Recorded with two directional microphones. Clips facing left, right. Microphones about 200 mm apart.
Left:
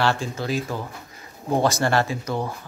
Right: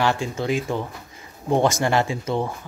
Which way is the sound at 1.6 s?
20° right (ahead or behind).